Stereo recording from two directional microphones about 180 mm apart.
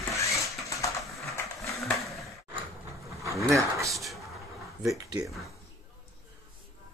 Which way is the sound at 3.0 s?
15° right (ahead or behind).